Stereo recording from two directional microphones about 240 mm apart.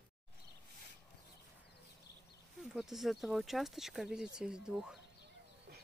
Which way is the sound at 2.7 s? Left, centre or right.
Centre.